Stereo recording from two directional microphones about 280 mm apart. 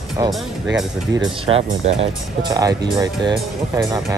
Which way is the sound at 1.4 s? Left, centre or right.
Right.